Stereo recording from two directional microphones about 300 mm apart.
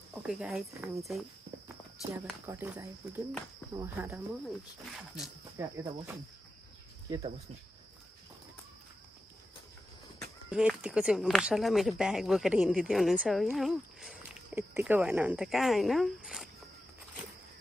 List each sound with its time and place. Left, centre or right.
0.3 s speech: centre
2.2 s speech: centre
10.5 s speech: centre